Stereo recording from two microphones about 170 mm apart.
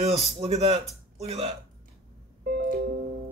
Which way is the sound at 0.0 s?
35° right (ahead or behind).